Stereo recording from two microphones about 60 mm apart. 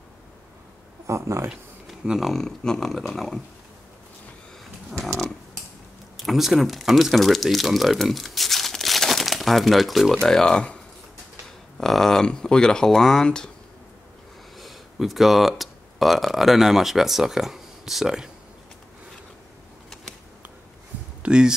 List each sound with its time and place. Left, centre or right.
1.0 s speech: right
2.0 s a sound: centre
2.3 s a sound: centre
6.1 s speech: centre
10.2 s speech: centre
11.8 s speech: centre
14.6 s speech: centre
21.2 s speech: centre